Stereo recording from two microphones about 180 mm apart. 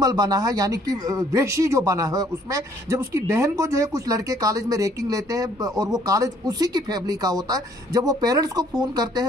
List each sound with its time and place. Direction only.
0.0 s speech: 20° right (ahead or behind)